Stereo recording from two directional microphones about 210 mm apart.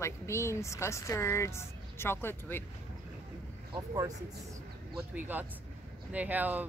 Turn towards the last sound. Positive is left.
turn(degrees=-10)  # may be behind; listen again after turning